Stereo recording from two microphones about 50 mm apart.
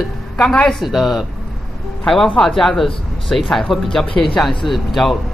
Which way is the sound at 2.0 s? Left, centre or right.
Centre.